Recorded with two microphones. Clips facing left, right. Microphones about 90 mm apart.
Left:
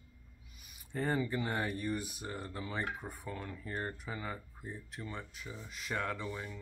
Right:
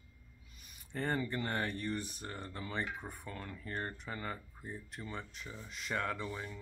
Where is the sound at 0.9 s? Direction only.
5° left (ahead or behind).